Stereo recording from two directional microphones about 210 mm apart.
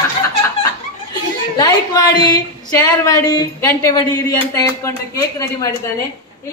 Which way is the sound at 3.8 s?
20° left (ahead or behind).